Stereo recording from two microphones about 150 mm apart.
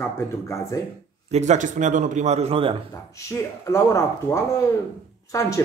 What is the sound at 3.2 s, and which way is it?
Speech, 20° left (ahead or behind).